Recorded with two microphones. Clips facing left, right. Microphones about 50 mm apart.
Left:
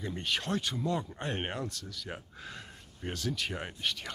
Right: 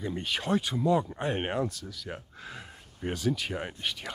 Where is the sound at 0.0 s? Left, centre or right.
Centre.